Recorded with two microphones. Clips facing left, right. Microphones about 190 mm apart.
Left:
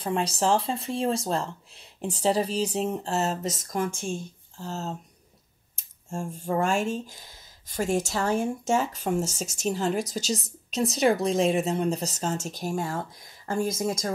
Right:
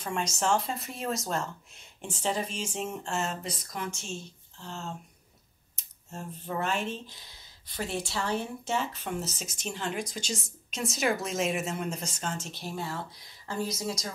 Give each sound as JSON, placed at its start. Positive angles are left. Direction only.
{"t": 0.0, "sound": "speech", "side_deg": 35}